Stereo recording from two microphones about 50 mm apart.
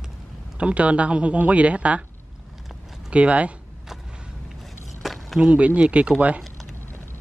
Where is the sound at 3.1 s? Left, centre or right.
Right.